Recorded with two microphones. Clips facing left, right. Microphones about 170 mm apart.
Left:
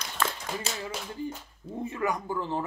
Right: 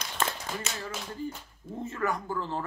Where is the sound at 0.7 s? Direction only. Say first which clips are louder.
Left 2 dB; 35° left (ahead or behind).